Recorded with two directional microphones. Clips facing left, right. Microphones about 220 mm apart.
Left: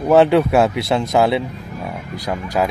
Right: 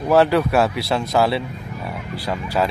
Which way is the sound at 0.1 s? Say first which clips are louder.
Left 3 dB; 20° left (ahead or behind).